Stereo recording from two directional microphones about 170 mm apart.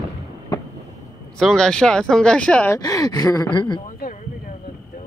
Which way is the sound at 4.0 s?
55° left (ahead or behind).